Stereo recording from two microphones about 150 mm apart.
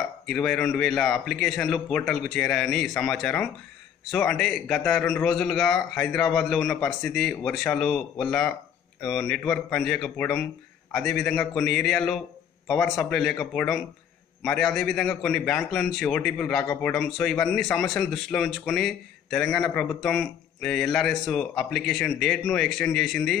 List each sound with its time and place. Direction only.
0.3 s a man's voice: 5° left (ahead or behind)